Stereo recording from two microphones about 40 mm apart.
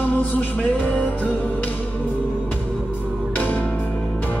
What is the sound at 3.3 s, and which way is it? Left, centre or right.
Music, left.